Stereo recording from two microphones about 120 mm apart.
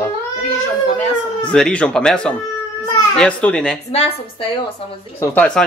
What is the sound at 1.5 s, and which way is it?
Speech, 10° left (ahead or behind).